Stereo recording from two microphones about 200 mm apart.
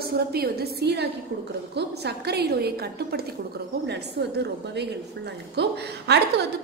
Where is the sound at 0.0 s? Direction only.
50° right (ahead or behind).